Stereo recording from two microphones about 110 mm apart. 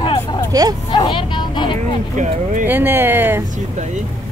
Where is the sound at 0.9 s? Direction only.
40° left (ahead or behind).